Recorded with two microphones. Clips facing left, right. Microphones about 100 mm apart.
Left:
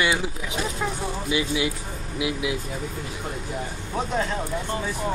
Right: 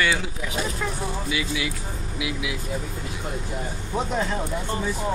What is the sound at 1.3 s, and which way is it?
Speech, 25° left (ahead or behind).